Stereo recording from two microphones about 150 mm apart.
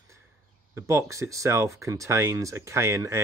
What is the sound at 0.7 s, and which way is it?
Speech, 20° right (ahead or behind).